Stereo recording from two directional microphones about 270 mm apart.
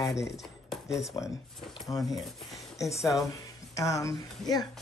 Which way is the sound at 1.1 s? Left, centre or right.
Centre.